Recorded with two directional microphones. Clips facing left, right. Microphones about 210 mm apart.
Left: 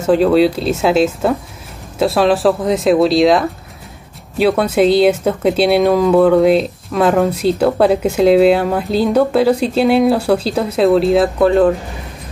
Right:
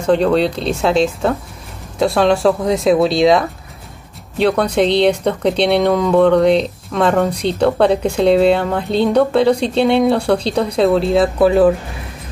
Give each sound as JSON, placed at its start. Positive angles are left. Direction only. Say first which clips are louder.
{"t": 0.0, "sound": "speech", "louder": "left 3 dB", "side_deg": 5}